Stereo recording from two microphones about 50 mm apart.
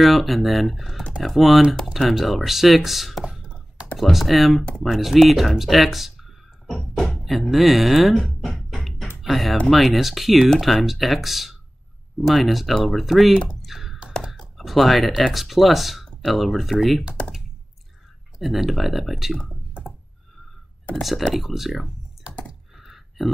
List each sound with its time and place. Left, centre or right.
0.0 s speech: centre
3.3 s a sound: centre
4.0 s speech: centre
7.5 s music: centre
9.2 s speech: centre
13.6 s typing: centre
14.3 s speech: centre
18.4 s speech: centre
20.9 s speech: centre
22.8 s a sound: centre